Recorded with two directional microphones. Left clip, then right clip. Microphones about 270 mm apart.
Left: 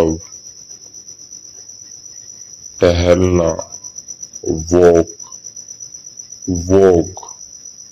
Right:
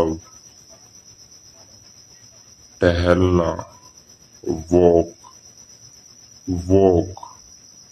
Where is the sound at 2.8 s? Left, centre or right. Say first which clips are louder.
Left 5 dB; centre.